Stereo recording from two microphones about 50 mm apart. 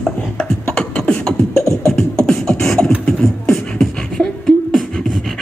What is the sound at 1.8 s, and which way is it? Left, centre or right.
Beatboxing, centre.